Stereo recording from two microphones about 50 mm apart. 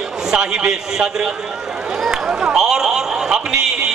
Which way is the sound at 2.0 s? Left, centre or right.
Centre.